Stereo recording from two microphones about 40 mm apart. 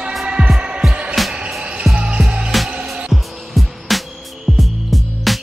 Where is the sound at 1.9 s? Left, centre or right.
Right.